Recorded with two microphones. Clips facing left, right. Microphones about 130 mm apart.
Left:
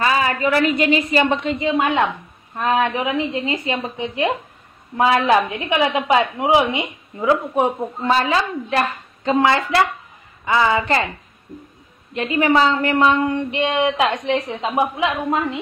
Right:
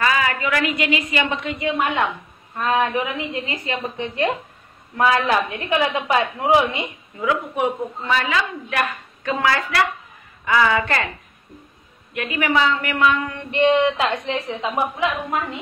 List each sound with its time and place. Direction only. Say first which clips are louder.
0.0 s a woman's voice: left 2 dB; 30° left (ahead or behind)
1.6 s a woman's voice: left 1 dB; 15° left (ahead or behind)
7.2 s a woman's voice: left 4 dB; 30° left (ahead or behind)
12.1 s a woman's voice: left 5 dB; 25° left (ahead or behind)
13.5 s a woman's voice: right 3 dB; 15° left (ahead or behind)